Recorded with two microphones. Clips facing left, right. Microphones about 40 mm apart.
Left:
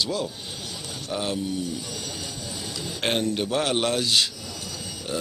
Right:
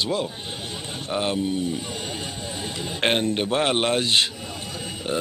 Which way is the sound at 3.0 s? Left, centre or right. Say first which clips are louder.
Right 3 dB; right.